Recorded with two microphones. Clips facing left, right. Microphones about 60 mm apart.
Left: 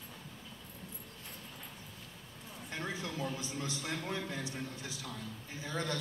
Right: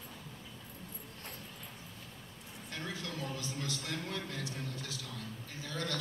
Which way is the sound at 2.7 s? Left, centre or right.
Left.